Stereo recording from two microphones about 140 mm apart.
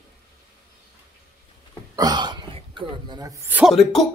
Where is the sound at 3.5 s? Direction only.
5° right (ahead or behind).